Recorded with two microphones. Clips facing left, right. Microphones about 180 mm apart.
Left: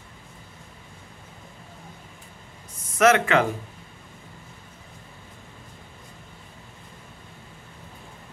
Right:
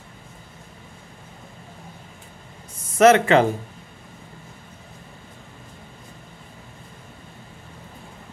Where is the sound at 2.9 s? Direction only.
30° right (ahead or behind).